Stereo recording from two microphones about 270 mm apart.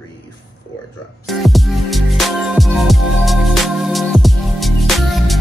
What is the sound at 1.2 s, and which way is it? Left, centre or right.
Music, centre.